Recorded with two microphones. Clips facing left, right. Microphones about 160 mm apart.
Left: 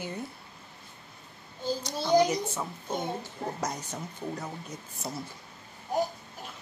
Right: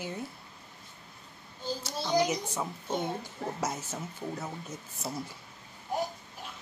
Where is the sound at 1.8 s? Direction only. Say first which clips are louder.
Left 4 dB; 5° right (ahead or behind).